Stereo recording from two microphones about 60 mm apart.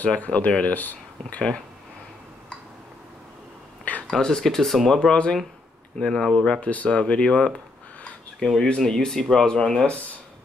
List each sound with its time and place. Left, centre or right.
0.0 s speech: left
4.1 s speech: centre
5.9 s speech: centre
6.6 s speech: left
8.6 s speech: centre